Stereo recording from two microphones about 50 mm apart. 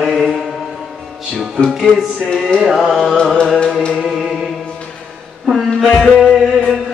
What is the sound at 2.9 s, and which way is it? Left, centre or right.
Music, centre.